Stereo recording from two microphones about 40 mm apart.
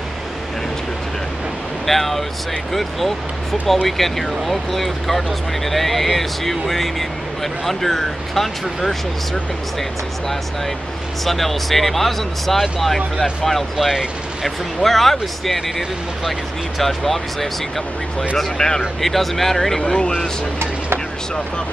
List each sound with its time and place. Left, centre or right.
1.9 s speech: centre
11.2 s speech: centre
13.7 s speech: centre
18.6 s speech: centre
18.9 s speech: centre
19.8 s speech: left